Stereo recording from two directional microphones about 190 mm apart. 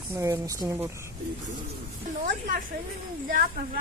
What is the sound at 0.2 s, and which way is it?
Speech, 15° right (ahead or behind).